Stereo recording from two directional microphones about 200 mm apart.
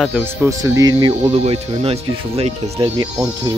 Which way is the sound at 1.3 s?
30° right (ahead or behind).